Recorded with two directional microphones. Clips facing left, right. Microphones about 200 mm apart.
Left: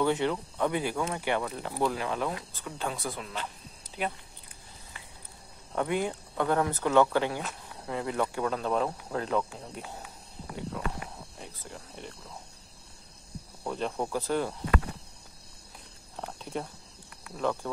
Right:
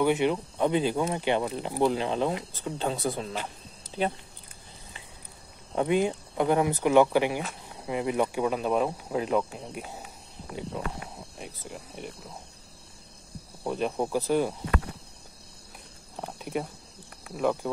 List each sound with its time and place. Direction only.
0.0 s speech: 15° right (ahead or behind)
5.8 s speech: 20° right (ahead or behind)
13.7 s speech: 15° right (ahead or behind)
16.2 s cricket: 15° right (ahead or behind)
17.4 s speech: 10° right (ahead or behind)